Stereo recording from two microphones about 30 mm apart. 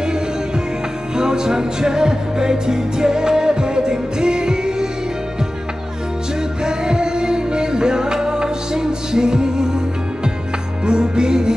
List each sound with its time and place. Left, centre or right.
1.1 s music: right
6.6 s music: right
10.9 s music: right